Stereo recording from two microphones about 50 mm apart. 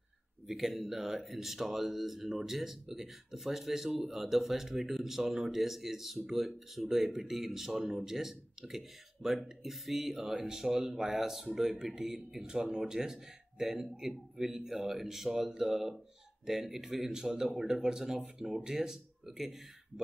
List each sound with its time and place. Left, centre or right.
0.5 s speech: centre